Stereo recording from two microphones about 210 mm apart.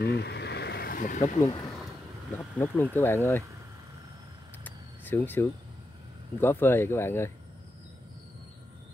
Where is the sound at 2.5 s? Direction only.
10° left (ahead or behind).